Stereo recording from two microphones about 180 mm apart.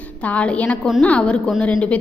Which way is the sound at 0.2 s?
5° left (ahead or behind).